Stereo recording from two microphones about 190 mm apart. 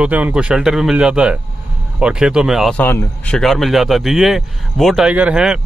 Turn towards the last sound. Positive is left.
turn(degrees=-5)  # may be behind; listen again after turning